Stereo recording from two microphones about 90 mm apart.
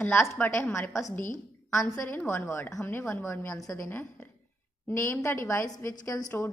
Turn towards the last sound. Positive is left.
turn(degrees=30)  # may be behind; listen again after turning